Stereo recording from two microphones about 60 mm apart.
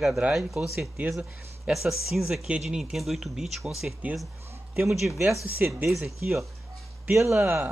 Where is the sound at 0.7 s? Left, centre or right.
Right.